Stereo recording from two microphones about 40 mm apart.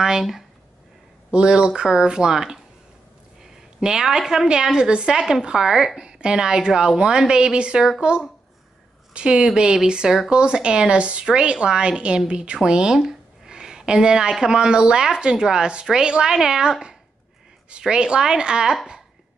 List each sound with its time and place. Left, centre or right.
0.2 s speech: centre
1.3 s speech: right
4.0 s speech: centre
5.9 s speech: centre
12.9 s a sound: centre
14.4 s speech: centre